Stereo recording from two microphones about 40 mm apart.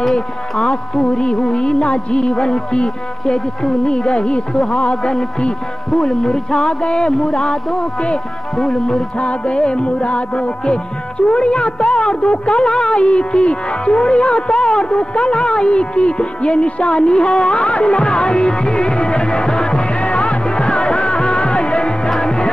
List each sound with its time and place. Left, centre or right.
0.1 s music: centre
8.5 s music: centre